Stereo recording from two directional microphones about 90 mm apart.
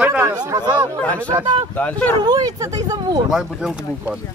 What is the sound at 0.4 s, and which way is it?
Speech, 45° right (ahead or behind).